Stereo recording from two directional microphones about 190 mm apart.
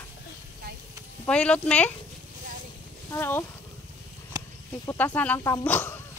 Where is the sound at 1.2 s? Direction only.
5° left (ahead or behind).